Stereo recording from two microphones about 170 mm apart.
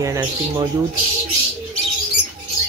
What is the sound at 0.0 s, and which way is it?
Speech, 20° right (ahead or behind).